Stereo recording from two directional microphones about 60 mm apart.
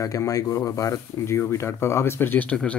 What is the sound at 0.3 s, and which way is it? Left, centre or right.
Speech, left.